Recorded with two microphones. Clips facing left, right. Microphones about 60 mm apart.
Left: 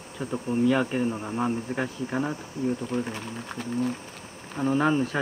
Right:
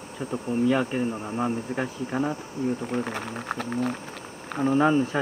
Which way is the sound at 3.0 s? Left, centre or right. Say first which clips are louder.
Right 2 dB; right.